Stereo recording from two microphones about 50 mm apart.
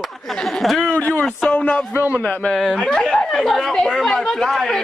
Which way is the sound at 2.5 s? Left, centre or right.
Centre.